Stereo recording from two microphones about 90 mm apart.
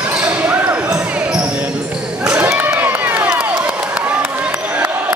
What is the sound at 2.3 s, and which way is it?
Crowd, 15° right (ahead or behind).